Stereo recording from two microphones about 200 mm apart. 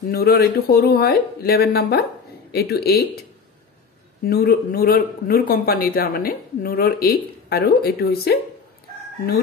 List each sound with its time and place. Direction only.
0.1 s a man's voice: 50° left (ahead or behind)